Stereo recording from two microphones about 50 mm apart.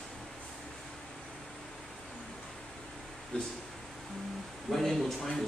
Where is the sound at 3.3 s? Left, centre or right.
Left.